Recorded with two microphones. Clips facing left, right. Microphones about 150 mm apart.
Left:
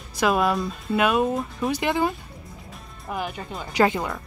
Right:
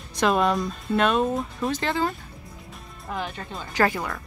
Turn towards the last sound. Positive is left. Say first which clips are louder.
# left 2 dB
turn(degrees=20)  # may be behind; listen again after turning